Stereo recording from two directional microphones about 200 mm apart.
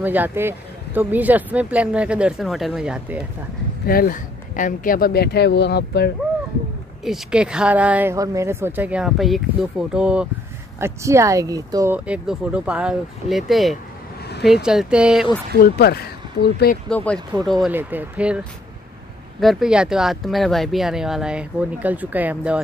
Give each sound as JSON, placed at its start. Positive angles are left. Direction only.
{"t": 0.0, "sound": "speech", "side_deg": -10}
{"t": 3.8, "sound": "speech", "side_deg": 50}
{"t": 7.1, "sound": "speech", "side_deg": -5}
{"t": 15.6, "sound": "speech", "side_deg": 50}
{"t": 16.9, "sound": "speech", "side_deg": 5}
{"t": 19.4, "sound": "speech", "side_deg": -5}